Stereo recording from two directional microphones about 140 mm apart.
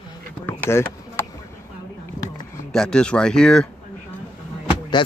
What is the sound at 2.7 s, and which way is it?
Speech, 5° left (ahead or behind).